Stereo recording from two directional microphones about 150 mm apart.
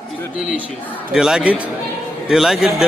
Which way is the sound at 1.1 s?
5° right (ahead or behind).